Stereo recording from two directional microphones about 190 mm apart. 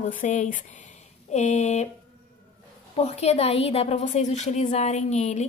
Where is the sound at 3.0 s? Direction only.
35° left (ahead or behind).